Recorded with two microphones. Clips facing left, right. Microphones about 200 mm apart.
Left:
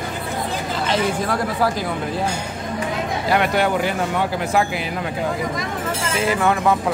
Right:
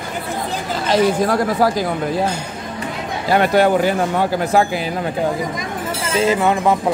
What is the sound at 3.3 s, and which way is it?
Speech, 35° right (ahead or behind).